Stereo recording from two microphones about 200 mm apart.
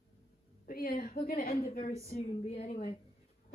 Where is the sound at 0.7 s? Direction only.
45° left (ahead or behind).